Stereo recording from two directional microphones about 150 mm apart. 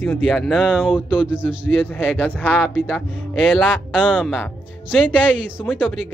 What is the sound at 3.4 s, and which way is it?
Speech, 5° left (ahead or behind).